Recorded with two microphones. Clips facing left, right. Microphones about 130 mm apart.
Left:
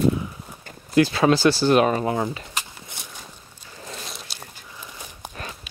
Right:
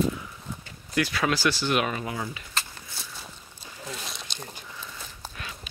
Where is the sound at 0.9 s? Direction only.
30° left (ahead or behind).